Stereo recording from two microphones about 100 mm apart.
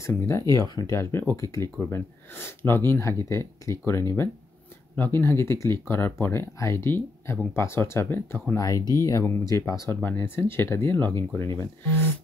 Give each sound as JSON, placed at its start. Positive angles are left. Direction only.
{"t": 0.1, "sound": "speech", "side_deg": 30}
{"t": 8.5, "sound": "speech", "side_deg": 35}